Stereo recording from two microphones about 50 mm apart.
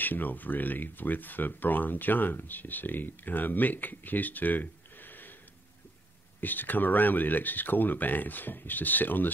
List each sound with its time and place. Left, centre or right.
0.0 s speech: left
6.4 s speech: left